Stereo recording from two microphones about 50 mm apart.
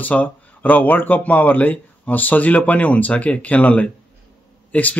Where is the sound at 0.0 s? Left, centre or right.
Left.